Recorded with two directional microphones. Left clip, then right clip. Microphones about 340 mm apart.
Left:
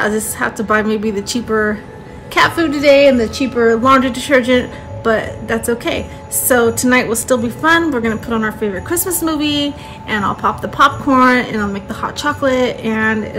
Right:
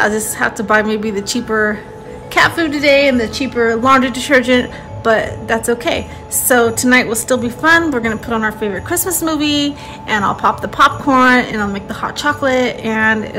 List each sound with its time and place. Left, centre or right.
0.0 s a woman's voice: centre